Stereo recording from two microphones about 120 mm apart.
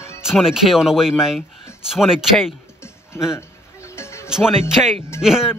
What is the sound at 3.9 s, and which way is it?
Music, 20° left (ahead or behind).